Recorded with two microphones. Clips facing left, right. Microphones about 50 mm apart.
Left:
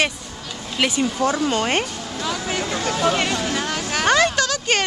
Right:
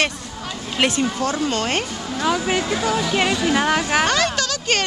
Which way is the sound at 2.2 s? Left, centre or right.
Right.